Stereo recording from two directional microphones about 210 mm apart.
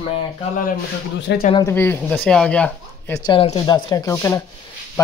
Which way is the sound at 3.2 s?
25° left (ahead or behind).